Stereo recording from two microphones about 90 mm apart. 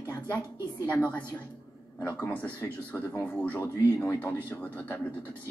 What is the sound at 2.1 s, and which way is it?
A woman's voice, 20° left (ahead or behind).